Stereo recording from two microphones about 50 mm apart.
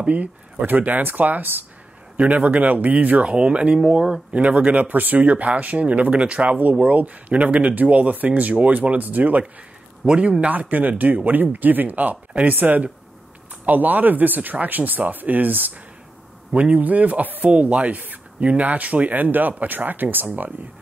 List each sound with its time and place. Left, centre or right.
0.0 s speech: right; by 4.2 s centre
4.3 s speech: right
10.0 s speech: centre; by 20.2 s right